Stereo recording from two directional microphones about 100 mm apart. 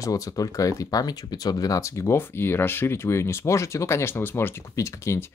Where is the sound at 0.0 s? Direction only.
35° left (ahead or behind).